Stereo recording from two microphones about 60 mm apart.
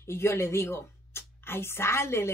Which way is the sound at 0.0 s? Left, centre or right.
Left.